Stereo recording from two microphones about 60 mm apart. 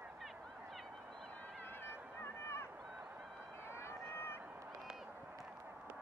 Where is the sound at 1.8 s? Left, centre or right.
Left.